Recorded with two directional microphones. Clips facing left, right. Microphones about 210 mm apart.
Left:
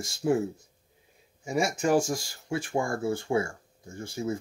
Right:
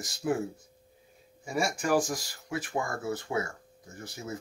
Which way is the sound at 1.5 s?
25° left (ahead or behind).